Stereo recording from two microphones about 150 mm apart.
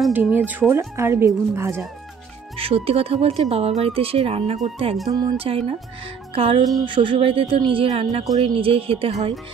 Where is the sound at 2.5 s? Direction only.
40° right (ahead or behind).